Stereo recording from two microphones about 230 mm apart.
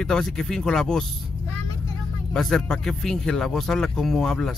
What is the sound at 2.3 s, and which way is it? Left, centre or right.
Speech, centre.